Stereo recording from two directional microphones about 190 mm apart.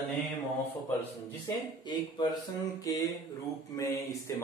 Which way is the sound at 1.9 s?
20° left (ahead or behind).